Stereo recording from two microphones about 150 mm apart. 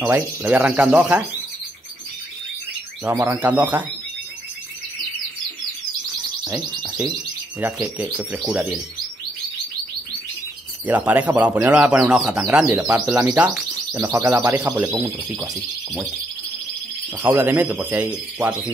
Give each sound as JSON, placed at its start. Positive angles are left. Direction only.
{"t": 0.1, "sound": "speech", "side_deg": -10}
{"t": 3.0, "sound": "speech", "side_deg": -20}
{"t": 6.5, "sound": "speech", "side_deg": -5}
{"t": 10.9, "sound": "speech", "side_deg": -10}
{"t": 12.6, "sound": "speech", "side_deg": -20}
{"t": 15.4, "sound": "speech", "side_deg": 0}
{"t": 17.2, "sound": "speech", "side_deg": -15}